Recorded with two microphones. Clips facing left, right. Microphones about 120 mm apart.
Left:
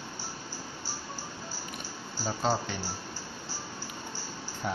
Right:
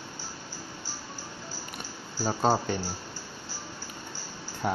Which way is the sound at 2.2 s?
45° right (ahead or behind).